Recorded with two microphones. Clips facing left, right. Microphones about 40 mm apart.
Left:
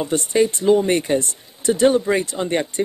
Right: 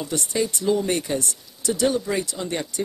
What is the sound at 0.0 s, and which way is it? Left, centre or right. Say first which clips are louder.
Speech: left 7 dB; left.